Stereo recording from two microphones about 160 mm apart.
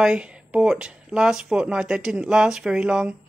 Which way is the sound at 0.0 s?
5° right (ahead or behind).